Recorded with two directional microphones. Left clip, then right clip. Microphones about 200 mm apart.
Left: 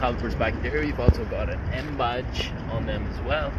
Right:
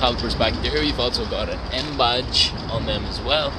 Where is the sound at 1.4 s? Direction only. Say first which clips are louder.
Right 6 dB; 20° right (ahead or behind).